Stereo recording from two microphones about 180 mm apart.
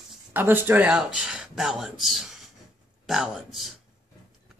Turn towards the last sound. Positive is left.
turn(degrees=0)  # may be behind; listen again after turning